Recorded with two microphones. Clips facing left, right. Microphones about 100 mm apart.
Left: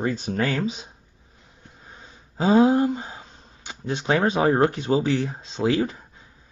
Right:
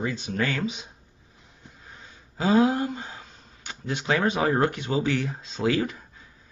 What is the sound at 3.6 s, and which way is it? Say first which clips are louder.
Speech: left 3 dB; 25° left (ahead or behind).